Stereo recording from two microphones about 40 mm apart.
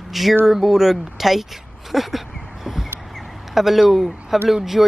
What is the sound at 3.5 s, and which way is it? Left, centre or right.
Speech, centre.